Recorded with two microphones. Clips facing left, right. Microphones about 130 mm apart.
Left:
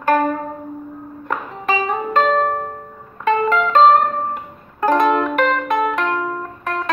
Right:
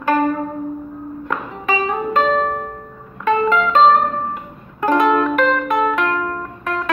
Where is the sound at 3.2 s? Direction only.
40° left (ahead or behind).